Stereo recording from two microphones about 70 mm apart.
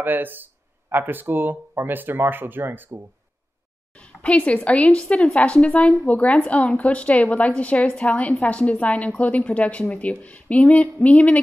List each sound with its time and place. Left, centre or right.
0.0 s speech: right
3.9 s a woman's voice: centre